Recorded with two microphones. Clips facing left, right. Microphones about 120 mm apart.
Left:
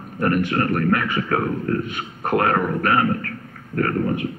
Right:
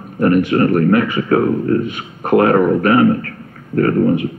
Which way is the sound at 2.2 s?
20° right (ahead or behind).